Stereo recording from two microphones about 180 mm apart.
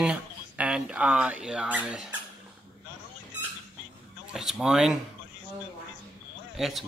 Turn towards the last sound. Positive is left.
turn(degrees=0)  # may be behind; listen again after turning